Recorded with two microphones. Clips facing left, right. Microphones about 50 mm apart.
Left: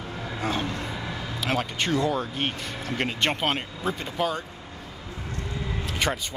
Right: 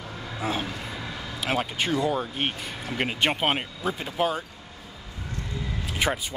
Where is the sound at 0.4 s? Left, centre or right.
Centre.